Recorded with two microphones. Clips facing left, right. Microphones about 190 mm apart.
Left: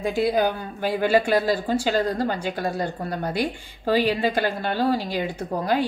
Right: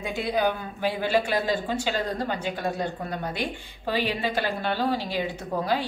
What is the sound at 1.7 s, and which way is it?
Speech, 40° left (ahead or behind).